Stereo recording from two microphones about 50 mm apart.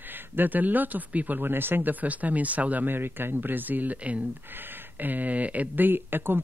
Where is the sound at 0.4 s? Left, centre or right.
Right.